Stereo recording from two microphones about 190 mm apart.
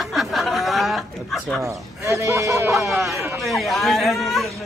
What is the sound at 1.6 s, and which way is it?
Speech, 15° right (ahead or behind).